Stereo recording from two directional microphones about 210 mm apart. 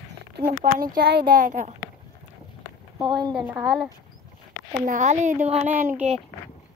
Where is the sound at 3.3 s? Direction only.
10° right (ahead or behind).